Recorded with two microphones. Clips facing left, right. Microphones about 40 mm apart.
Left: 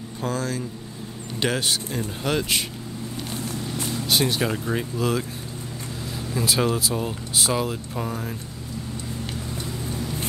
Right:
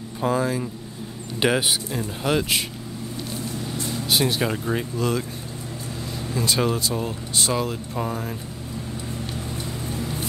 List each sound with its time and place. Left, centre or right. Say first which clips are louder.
0.2 s speech: right 5 dB; centre
3.9 s speech: right 1 dB; centre
6.3 s speech: even; centre
9.8 s vehicle: right 1 dB; right